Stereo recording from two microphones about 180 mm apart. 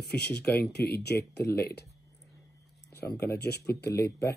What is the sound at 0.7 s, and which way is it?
Speech, 65° left (ahead or behind).